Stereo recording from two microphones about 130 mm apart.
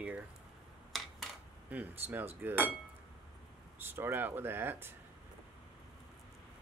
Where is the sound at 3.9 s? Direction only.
15° right (ahead or behind).